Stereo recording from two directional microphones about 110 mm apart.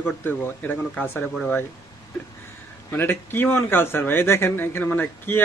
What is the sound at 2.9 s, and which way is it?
A man's voice, 20° left (ahead or behind).